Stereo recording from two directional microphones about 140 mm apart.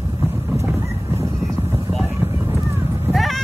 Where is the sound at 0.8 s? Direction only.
20° right (ahead or behind).